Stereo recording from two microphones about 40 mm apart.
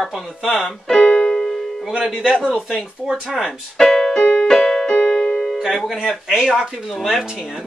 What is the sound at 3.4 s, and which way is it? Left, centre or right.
Keyboard, centre.